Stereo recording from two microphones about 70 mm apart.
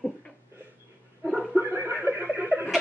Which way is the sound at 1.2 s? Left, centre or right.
Centre.